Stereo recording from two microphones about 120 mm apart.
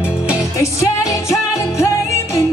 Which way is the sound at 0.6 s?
25° left (ahead or behind).